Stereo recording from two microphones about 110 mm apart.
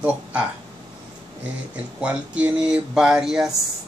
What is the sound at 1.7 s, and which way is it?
Speech, 10° right (ahead or behind).